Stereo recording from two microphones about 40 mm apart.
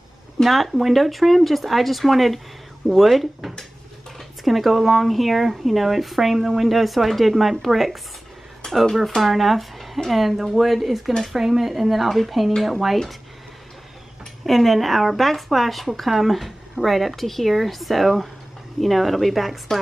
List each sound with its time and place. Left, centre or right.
0.4 s speech: centre
8.6 s a sound: centre
9.1 s speech: centre
14.4 s speech: centre